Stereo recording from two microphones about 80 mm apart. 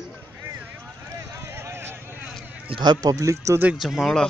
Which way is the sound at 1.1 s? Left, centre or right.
Right.